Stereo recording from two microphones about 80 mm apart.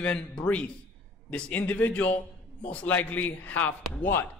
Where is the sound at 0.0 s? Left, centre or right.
Centre.